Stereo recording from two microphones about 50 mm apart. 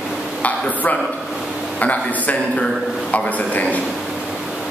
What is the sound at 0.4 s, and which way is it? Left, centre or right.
A man's voice, left.